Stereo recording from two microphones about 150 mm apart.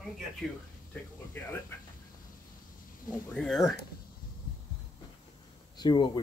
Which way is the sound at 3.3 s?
5° left (ahead or behind).